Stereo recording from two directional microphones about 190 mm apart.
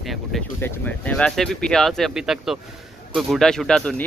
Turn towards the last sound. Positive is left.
turn(degrees=5)  # may be behind; listen again after turning